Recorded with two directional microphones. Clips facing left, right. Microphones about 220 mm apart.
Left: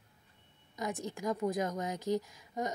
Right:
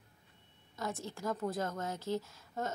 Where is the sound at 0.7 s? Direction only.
15° left (ahead or behind).